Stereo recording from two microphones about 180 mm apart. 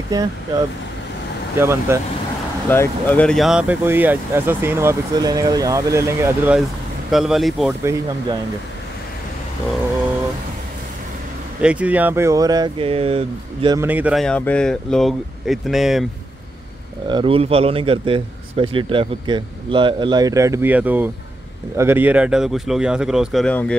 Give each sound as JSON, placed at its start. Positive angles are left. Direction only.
{"t": 0.1, "sound": "a man's voice", "side_deg": -20}
{"t": 2.7, "sound": "speech", "side_deg": 10}
{"t": 7.1, "sound": "speech", "side_deg": 0}
{"t": 7.8, "sound": "speech", "side_deg": -15}
{"t": 11.6, "sound": "a man's voice", "side_deg": -5}
{"t": 13.7, "sound": "speech", "side_deg": -10}
{"t": 14.2, "sound": "speech", "side_deg": 5}
{"t": 17.1, "sound": "a man's voice", "side_deg": -30}